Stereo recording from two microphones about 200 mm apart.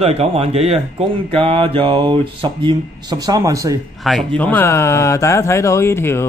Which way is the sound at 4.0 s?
Centre (ahead or behind).